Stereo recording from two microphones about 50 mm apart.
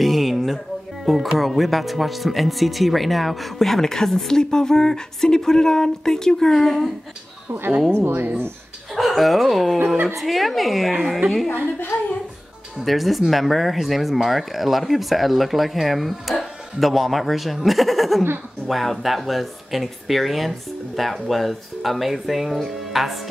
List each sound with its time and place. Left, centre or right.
0.0 s a sound: centre
1.0 s speech: centre
7.9 s speech: right
8.9 s speech: centre
12.8 s speech: centre